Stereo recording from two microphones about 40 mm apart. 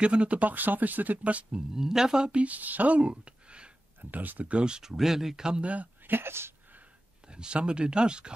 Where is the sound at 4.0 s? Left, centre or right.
Right.